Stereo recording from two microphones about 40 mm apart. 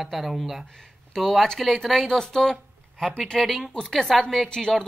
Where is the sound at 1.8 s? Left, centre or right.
Centre.